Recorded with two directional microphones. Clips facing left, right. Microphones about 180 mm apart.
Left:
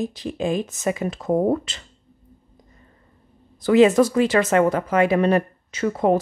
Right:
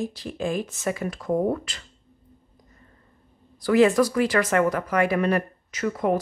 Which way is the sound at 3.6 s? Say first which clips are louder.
Left 4 dB; 20° left (ahead or behind).